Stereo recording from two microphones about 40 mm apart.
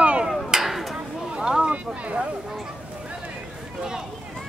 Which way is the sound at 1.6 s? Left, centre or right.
Right.